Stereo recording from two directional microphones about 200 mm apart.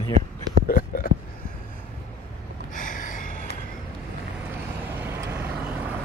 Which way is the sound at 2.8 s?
40° left (ahead or behind).